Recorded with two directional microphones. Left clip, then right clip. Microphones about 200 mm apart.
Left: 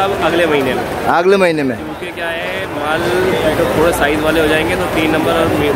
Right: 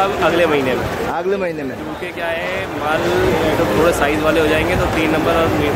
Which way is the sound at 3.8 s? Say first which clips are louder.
Left 2 dB; centre (ahead or behind).